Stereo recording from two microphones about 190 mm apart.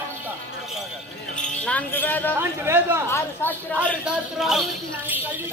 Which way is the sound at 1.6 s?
10° left (ahead or behind).